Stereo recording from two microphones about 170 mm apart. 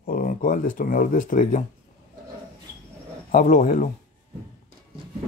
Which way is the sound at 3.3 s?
45° left (ahead or behind).